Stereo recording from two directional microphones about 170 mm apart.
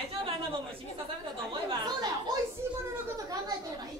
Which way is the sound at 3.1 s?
20° right (ahead or behind).